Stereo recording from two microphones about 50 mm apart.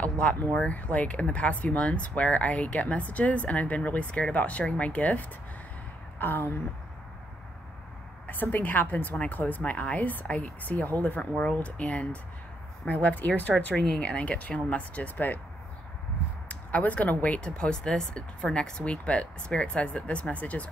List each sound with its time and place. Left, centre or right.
0.0 s a sound: left
0.5 s speech: left
6.1 s a sound: left
8.3 s a woman's voice: left
13.7 s a woman's voice: left
16.4 s speech: left